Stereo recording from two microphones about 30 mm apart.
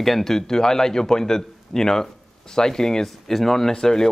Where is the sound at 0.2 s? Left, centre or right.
Centre.